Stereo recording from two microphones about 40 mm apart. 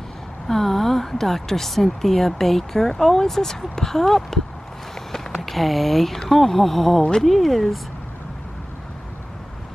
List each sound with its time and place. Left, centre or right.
0.5 s speech: centre
5.1 s a sound: centre
6.2 s speech: centre
7.0 s speech: centre
7.2 s speech: centre